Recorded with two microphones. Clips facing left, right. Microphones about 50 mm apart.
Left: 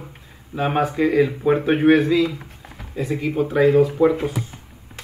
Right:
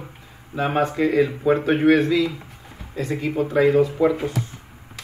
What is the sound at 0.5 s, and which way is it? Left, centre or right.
Speech, centre.